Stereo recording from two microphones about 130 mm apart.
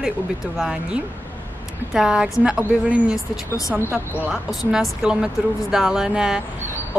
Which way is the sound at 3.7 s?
20° right (ahead or behind).